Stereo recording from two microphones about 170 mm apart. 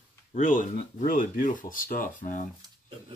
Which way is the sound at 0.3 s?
50° left (ahead or behind).